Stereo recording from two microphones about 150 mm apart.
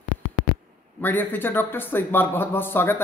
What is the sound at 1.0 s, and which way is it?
Speech, 15° left (ahead or behind).